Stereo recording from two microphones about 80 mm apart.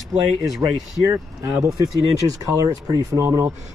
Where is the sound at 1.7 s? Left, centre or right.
Right.